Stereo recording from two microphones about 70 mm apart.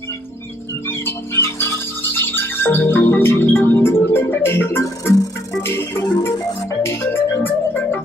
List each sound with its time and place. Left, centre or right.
0.8 s music: left
6.3 s music: left
6.8 s music: left